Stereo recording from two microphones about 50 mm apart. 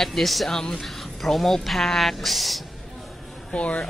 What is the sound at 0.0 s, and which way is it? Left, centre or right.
Speech, centre.